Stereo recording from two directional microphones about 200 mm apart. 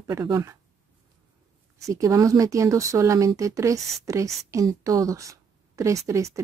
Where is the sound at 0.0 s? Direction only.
15° right (ahead or behind).